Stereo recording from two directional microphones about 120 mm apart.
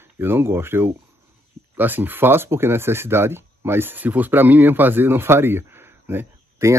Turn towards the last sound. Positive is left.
turn(degrees=-20)  # may be behind; listen again after turning